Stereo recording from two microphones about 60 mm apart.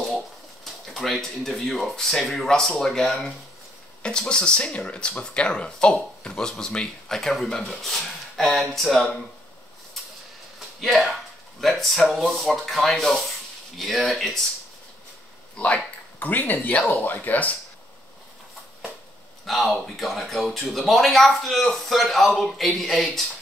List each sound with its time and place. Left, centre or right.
0.8 s speech: centre
10.8 s speech: centre
16.2 s speech: left
19.4 s speech: centre